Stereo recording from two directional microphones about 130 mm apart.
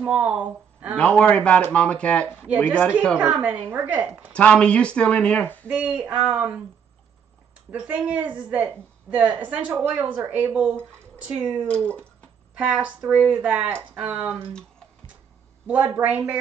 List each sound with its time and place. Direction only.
0.0 s speech: 10° right (ahead or behind)
0.9 s speech: 10° left (ahead or behind)
3.2 s speech: 10° right (ahead or behind)
4.3 s speech: 10° left (ahead or behind)
5.7 s speech: 10° right (ahead or behind)
7.7 s speech: 10° right (ahead or behind)
11.6 s speech: 10° left (ahead or behind)
12.5 s speech: 10° right (ahead or behind)
15.6 s speech: 10° right (ahead or behind)